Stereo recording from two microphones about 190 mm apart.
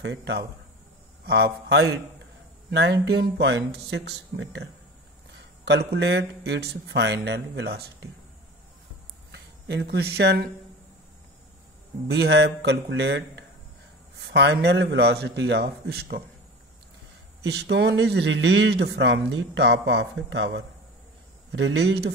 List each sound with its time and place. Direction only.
0.0 s speech: 65° right (ahead or behind)
5.7 s speech: 60° right (ahead or behind)
9.3 s speech: 60° right (ahead or behind)
12.1 s speech: 60° right (ahead or behind)
17.4 s speech: 65° right (ahead or behind)